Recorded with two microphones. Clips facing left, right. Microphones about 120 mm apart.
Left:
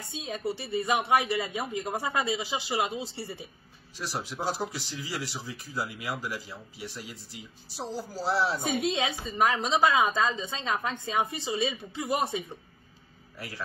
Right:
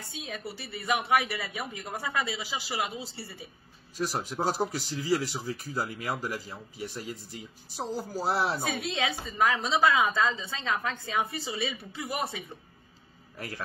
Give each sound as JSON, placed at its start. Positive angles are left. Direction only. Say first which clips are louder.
{"t": 0.1, "sound": "a woman's voice", "louder": "left 7 dB", "side_deg": 25}
{"t": 4.0, "sound": "speech", "louder": "right 3 dB", "side_deg": -45}
{"t": 8.6, "sound": "a woman's voice", "louder": "left 3 dB", "side_deg": 20}